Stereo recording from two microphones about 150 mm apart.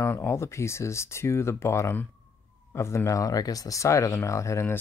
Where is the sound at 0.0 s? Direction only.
15° left (ahead or behind).